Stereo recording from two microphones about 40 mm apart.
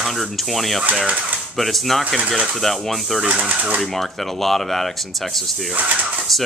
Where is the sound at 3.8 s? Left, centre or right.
Centre.